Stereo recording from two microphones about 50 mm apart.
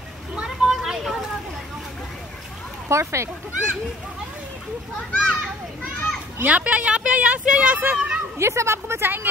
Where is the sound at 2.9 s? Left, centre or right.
Right.